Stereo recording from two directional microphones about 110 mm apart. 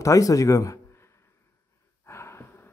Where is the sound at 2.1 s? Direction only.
25° left (ahead or behind).